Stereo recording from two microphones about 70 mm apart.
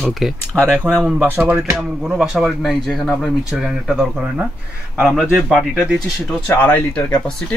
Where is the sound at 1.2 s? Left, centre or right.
Right.